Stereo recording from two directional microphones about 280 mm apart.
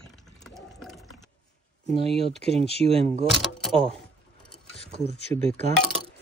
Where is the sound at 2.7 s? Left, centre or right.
Right.